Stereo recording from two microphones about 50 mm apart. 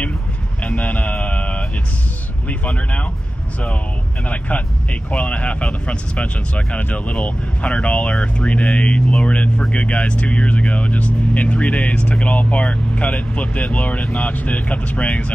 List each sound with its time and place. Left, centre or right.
0.7 s a sound: left
2.4 s speech: left
4.3 s speech: left